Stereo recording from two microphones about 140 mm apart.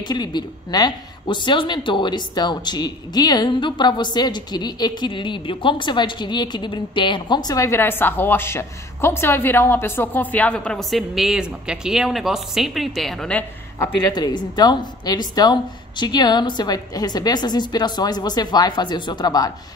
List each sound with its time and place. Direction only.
0.0 s speech: 30° left (ahead or behind); by 13.8 s 10° left (ahead or behind)
14.1 s speech: 30° left (ahead or behind)